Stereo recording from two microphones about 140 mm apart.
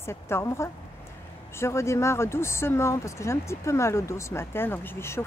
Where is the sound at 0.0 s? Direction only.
20° left (ahead or behind).